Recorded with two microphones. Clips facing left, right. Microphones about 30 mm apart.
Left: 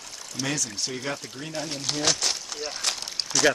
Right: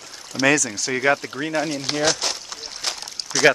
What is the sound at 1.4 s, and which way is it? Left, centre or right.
Speech, right.